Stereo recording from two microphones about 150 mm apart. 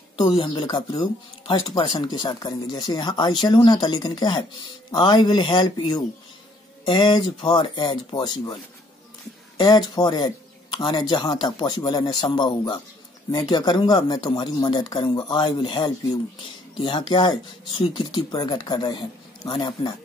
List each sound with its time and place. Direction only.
0.3 s speech: 30° left (ahead or behind)
9.6 s speech: 25° left (ahead or behind)